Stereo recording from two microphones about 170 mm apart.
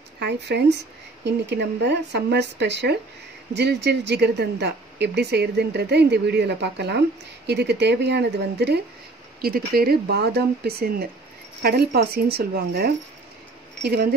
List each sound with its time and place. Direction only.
0.2 s speech: 80° right
9.4 s speech: 60° right (ahead or behind)